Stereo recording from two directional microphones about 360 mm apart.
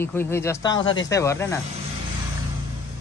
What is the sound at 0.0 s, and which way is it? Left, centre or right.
Speech, centre.